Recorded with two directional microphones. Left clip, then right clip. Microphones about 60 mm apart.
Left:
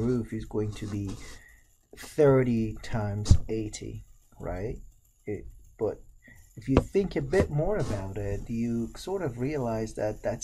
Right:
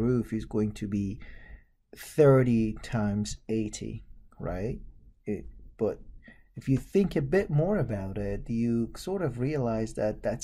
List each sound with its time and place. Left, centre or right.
0.0 s speech: right
5.2 s a sound: right
6.6 s speech: right